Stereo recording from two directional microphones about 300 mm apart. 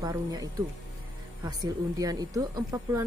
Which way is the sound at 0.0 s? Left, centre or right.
Centre.